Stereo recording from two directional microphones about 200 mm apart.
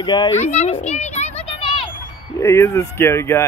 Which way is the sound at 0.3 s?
35° left (ahead or behind).